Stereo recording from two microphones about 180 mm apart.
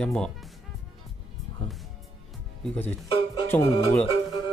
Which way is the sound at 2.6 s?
5° left (ahead or behind).